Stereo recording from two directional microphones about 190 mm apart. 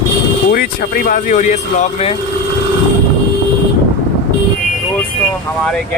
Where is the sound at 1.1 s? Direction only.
40° left (ahead or behind).